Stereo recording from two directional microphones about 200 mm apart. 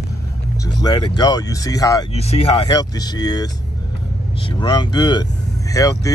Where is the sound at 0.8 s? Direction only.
20° left (ahead or behind).